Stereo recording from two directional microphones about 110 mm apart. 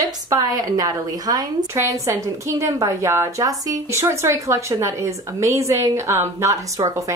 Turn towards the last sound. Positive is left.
turn(degrees=-25)  # may be behind; listen again after turning